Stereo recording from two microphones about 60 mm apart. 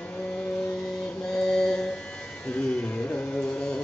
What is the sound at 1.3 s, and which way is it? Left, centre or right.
Mantra, centre.